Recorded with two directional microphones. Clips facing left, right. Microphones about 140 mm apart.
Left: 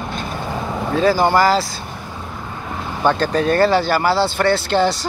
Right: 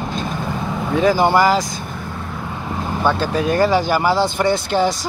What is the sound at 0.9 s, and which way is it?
Speech, 15° right (ahead or behind).